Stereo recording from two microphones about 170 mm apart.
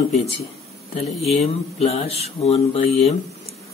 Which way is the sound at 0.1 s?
40° left (ahead or behind).